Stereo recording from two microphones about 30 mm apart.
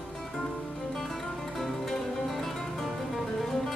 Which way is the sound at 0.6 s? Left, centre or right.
Left.